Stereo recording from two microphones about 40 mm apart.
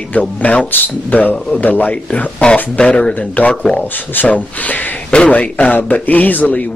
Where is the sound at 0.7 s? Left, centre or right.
Left.